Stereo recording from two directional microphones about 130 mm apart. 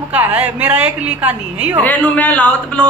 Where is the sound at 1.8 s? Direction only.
10° left (ahead or behind).